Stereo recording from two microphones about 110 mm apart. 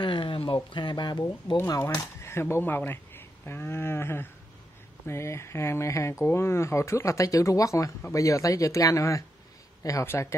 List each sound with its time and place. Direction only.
0.0 s a sound: 50° left (ahead or behind)
0.7 s speech: 45° left (ahead or behind)
1.7 s speech: 25° left (ahead or behind)